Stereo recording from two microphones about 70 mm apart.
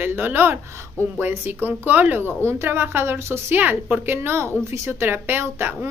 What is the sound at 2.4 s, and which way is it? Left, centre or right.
Speech, right.